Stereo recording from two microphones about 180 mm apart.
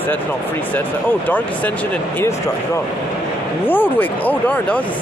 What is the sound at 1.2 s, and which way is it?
Speech, 10° left (ahead or behind).